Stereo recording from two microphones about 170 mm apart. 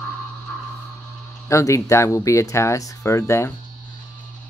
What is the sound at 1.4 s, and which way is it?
Speech, 15° left (ahead or behind).